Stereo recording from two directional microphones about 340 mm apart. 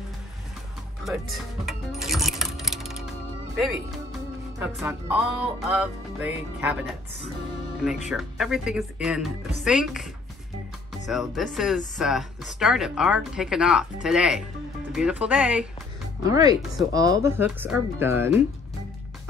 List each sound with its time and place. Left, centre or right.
1.0 s coin: centre
3.5 s speech: centre
4.7 s music: centre
8.1 s music: centre
11.1 s music: centre
16.3 s speech: centre